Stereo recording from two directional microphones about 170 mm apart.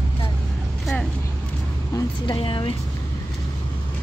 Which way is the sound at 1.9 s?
30° left (ahead or behind).